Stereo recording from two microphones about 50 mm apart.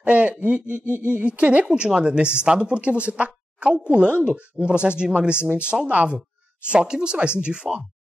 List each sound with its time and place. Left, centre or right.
0.0 s speech: right